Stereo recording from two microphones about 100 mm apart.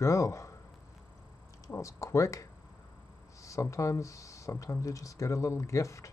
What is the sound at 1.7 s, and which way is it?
Speech, 30° left (ahead or behind).